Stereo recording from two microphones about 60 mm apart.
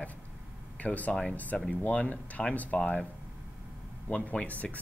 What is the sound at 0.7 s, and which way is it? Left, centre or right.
Speech, left.